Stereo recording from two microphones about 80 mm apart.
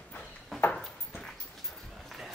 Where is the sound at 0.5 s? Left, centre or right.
Centre.